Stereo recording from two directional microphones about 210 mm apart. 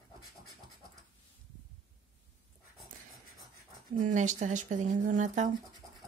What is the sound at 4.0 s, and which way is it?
Speech, 35° right (ahead or behind).